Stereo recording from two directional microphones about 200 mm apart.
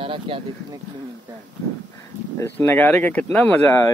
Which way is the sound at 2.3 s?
10° left (ahead or behind).